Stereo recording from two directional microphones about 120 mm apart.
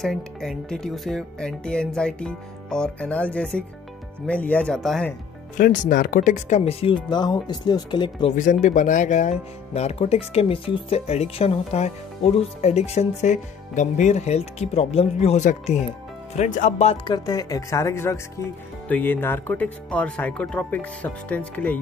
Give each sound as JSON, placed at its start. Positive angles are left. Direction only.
{"t": 0.0, "sound": "speech", "side_deg": 5}
{"t": 5.7, "sound": "speech", "side_deg": 90}
{"t": 8.3, "sound": "speech", "side_deg": 90}
{"t": 11.1, "sound": "speech", "side_deg": 60}
{"t": 16.3, "sound": "speech", "side_deg": 90}
{"t": 17.0, "sound": "speech", "side_deg": 35}